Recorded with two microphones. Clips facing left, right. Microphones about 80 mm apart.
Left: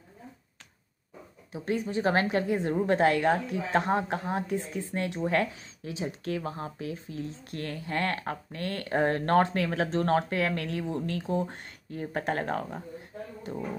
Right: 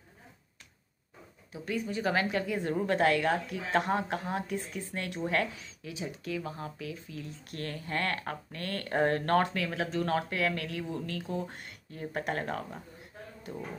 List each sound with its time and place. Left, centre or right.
1.7 s speech: left